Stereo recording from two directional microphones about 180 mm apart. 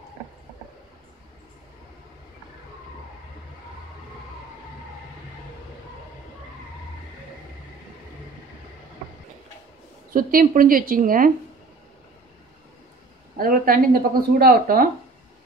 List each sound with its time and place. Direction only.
10.1 s speech: 50° right (ahead or behind)
13.4 s speech: 55° right (ahead or behind)